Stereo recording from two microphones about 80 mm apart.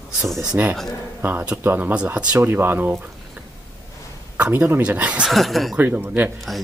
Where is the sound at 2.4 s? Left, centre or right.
Right.